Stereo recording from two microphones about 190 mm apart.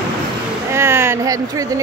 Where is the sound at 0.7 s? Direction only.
15° right (ahead or behind).